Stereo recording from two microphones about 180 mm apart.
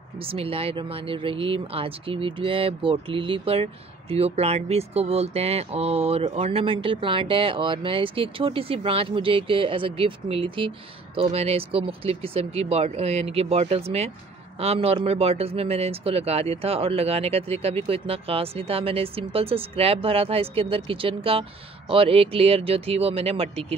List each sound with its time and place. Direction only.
0.2 s speech: 30° right (ahead or behind)